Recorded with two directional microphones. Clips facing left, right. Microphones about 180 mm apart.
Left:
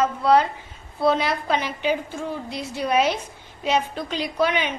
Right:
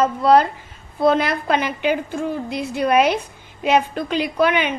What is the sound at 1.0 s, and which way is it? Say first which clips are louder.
A woman's voice: right 4 dB; 50° right (ahead or behind).